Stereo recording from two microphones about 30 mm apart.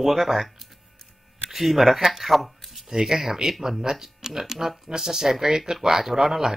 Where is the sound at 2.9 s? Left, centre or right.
Centre.